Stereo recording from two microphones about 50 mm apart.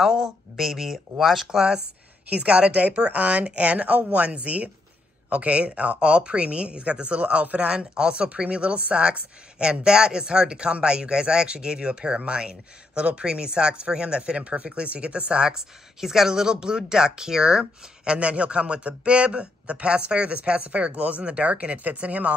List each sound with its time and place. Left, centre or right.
0.0 s speech: centre
2.2 s speech: right